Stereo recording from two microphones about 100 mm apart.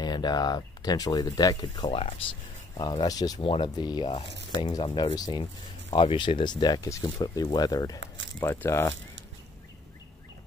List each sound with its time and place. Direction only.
0.0 s speech: 45° left (ahead or behind)
1.9 s speech: 75° left (ahead or behind)
2.8 s speech: 40° left (ahead or behind)
3.4 s speech: 60° left (ahead or behind)
3.7 s speech: 45° left (ahead or behind)
5.9 s speech: 55° left (ahead or behind); by 8.5 s 40° left (ahead or behind)
8.5 s speech: 25° left (ahead or behind)